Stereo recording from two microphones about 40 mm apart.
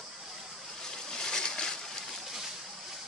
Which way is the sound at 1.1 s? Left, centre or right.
Centre.